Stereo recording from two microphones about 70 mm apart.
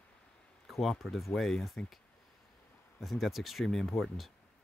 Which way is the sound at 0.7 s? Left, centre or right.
Centre.